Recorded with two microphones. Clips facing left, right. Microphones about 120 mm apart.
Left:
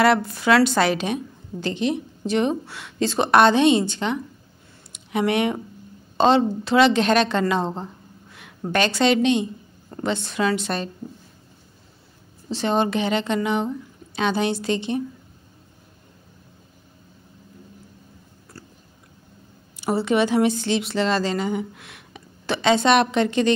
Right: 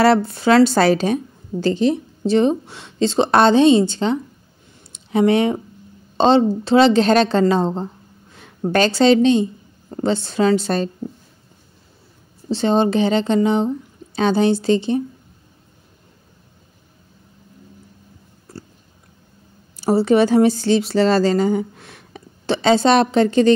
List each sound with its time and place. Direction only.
0.0 s speech: 30° right (ahead or behind)
12.4 s speech: 30° right (ahead or behind)
19.8 s speech: 35° right (ahead or behind)